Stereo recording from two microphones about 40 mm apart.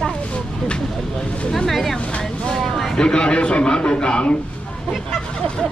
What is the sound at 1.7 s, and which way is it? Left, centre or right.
Speech, centre.